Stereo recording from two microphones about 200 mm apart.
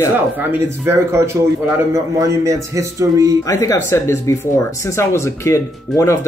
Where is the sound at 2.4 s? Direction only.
15° right (ahead or behind).